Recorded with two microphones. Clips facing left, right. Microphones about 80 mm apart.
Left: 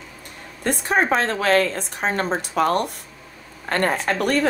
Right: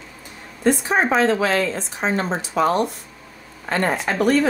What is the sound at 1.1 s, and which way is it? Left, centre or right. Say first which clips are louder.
A woman's voice: right 2 dB; left.